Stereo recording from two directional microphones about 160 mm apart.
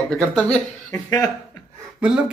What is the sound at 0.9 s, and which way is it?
Speech, 25° left (ahead or behind).